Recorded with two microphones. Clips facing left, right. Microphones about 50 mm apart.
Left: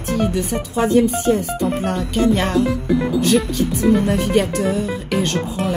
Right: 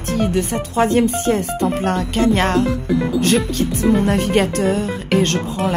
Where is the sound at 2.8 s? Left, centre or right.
Centre.